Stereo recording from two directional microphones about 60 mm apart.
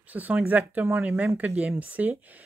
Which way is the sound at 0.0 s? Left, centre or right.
Right.